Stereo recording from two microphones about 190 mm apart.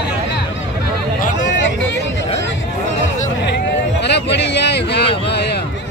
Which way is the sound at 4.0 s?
65° left (ahead or behind).